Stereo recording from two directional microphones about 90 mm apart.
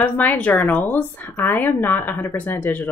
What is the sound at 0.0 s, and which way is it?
A woman's voice, 20° left (ahead or behind).